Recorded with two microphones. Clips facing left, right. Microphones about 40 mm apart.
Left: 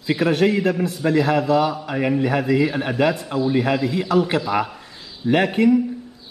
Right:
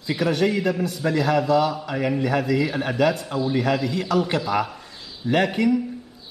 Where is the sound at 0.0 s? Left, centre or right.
Left.